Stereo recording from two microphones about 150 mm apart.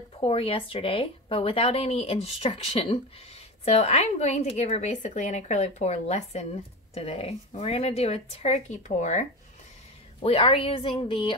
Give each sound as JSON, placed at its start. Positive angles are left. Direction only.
{"t": 0.2, "sound": "speech", "side_deg": 40}
{"t": 10.2, "sound": "a woman's voice", "side_deg": 40}